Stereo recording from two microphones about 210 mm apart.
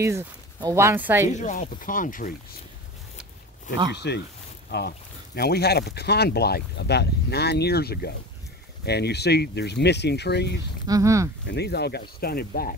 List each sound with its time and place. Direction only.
0.0 s speech: 15° right (ahead or behind)
1.3 s speech: 35° left (ahead or behind)
3.9 s speech: 55° left (ahead or behind)
10.9 s speech: 15° right (ahead or behind)
11.4 s speech: 50° left (ahead or behind)